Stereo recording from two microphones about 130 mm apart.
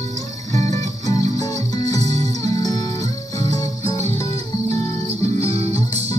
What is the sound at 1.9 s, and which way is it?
Music, 60° right (ahead or behind).